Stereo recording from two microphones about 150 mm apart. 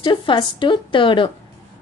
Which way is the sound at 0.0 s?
30° left (ahead or behind).